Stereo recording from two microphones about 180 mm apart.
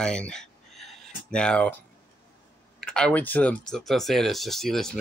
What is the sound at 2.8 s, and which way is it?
Speech, 5° left (ahead or behind).